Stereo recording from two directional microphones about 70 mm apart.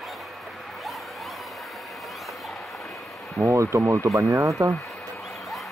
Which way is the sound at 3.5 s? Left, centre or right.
Right.